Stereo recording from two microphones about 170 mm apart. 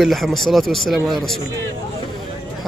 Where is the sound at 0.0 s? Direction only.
Centre (ahead or behind).